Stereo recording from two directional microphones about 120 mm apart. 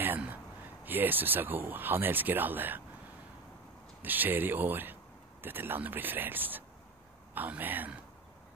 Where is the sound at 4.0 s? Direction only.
15° right (ahead or behind).